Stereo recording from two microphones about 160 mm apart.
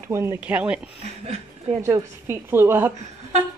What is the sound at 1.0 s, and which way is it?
Speech, 40° right (ahead or behind).